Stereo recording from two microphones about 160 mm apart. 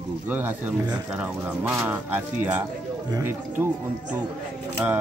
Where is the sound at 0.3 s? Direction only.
10° right (ahead or behind).